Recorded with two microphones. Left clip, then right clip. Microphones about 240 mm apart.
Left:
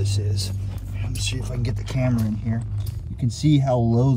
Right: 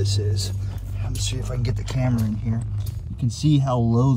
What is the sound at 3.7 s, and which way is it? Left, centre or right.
Speech, centre.